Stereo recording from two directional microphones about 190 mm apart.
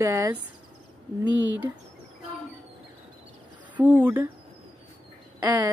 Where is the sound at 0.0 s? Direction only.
15° right (ahead or behind).